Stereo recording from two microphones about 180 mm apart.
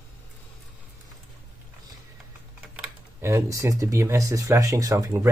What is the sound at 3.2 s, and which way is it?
Speech, 15° right (ahead or behind).